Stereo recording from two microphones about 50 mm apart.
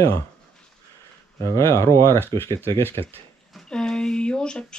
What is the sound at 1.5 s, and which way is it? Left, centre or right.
Speech, left.